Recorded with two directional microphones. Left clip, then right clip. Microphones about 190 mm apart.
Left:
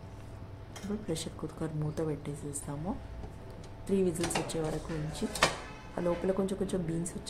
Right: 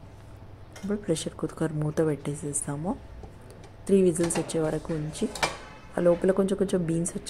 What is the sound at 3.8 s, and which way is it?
Speech, 30° right (ahead or behind).